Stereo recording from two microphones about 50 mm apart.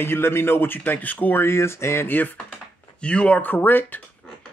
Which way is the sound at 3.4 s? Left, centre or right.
Left.